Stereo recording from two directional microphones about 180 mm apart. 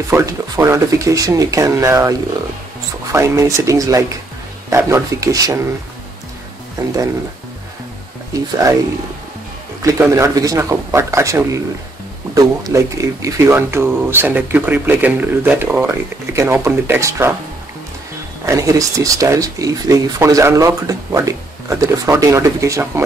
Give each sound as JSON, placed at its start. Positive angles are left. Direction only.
{"t": 0.1, "sound": "speech", "side_deg": -15}
{"t": 8.3, "sound": "speech", "side_deg": -20}
{"t": 9.8, "sound": "speech", "side_deg": -15}
{"t": 18.4, "sound": "speech", "side_deg": -15}